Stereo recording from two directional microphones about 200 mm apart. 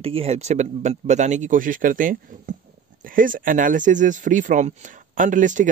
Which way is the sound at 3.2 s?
45° right (ahead or behind).